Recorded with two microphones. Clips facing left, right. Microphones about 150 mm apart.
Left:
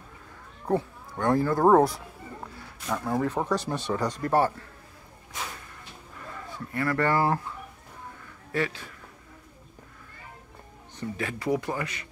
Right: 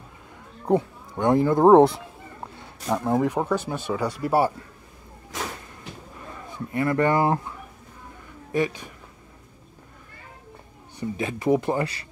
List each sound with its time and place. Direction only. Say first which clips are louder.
0.7 s speech: right 5 dB; 15° right (ahead or behind)
6.5 s speech: right 4 dB; 20° right (ahead or behind)
8.5 s speech: right 5 dB; 15° right (ahead or behind)
11.0 s speech: right 4 dB; 20° right (ahead or behind)